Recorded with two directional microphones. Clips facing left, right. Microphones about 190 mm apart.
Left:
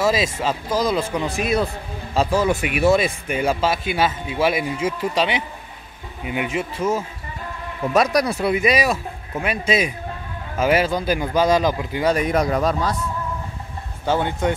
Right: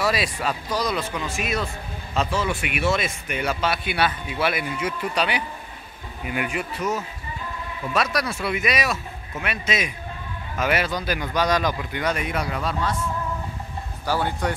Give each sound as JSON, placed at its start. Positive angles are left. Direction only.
{"t": 0.0, "sound": "speech", "side_deg": 25}
{"t": 7.9, "sound": "speech", "side_deg": 40}
{"t": 14.0, "sound": "speech", "side_deg": 20}